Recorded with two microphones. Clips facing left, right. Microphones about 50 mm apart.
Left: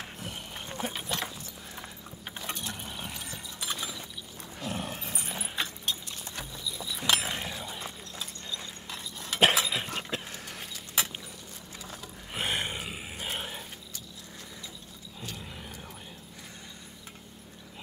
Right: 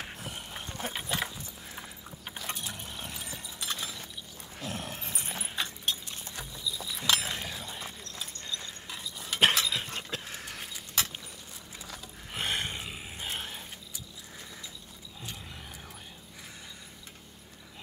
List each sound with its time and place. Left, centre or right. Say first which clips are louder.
0.0 s horse: even; centre
1.0 s horse: right 1 dB; centre
2.4 s mechanisms: left 1 dB; centre
2.8 s vehicle: left 1 dB; centre
4.6 s dog: left 2 dB; centre
6.3 s clip-clop: right 1 dB; left
7.0 s a sound: left 1 dB; centre
8.9 s cutlery: left 1 dB; centre
9.7 s dog: left 1 dB; left
10.4 s a sound: even; centre
11.0 s a sound: left 1 dB; centre
12.3 s roar: left 1 dB; centre